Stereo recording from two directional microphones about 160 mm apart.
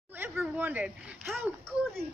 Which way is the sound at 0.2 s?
10° right (ahead or behind).